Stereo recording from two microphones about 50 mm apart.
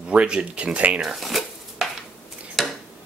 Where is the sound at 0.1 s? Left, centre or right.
Right.